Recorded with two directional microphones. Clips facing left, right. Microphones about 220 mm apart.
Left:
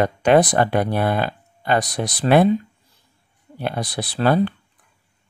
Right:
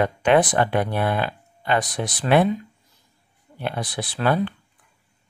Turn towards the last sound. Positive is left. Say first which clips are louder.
# left 4 dB
turn(degrees=40)  # may be behind; listen again after turning